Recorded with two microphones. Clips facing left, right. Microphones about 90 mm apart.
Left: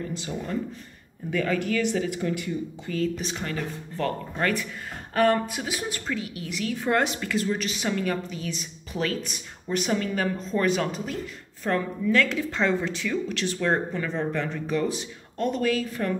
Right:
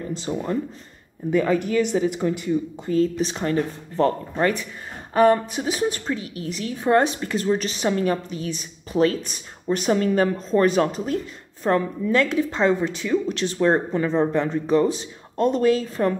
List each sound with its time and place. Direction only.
0.1 s a woman's voice: 35° right (ahead or behind)
11.6 s a woman's voice: 25° right (ahead or behind)